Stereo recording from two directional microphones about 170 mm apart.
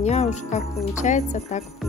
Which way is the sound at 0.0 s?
40° left (ahead or behind).